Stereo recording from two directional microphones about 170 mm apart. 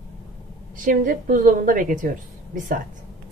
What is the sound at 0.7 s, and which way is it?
A woman's voice, 50° right (ahead or behind).